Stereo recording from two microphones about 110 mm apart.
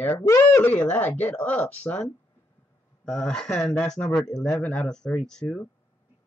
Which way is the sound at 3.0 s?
5° left (ahead or behind).